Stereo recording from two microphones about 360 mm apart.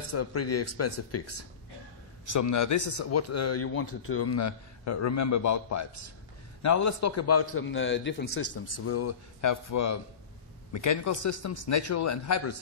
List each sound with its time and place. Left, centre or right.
0.1 s a man's voice: left
2.3 s speech: left